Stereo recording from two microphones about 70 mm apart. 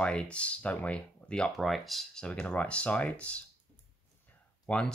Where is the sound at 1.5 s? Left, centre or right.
Centre.